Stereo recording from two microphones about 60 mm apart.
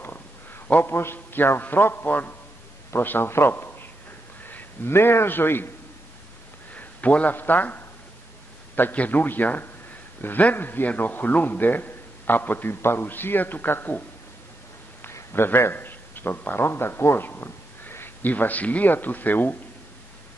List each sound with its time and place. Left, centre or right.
0.8 s a man's voice: left
6.7 s a man's voice: left
8.9 s a man's voice: left
15.3 s a man's voice: left